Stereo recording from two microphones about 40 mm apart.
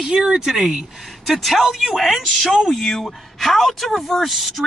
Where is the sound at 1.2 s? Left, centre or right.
Centre.